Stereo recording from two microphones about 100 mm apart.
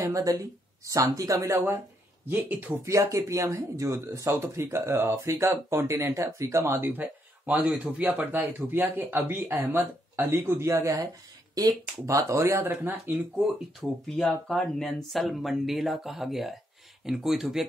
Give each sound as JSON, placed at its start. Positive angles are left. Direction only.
{"t": 0.0, "sound": "speech", "side_deg": -35}
{"t": 13.7, "sound": "speech", "side_deg": 0}